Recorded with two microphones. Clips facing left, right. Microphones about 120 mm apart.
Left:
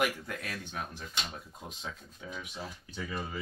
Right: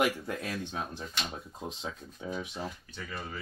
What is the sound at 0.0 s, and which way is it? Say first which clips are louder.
Speech: right 3 dB; 25° right (ahead or behind).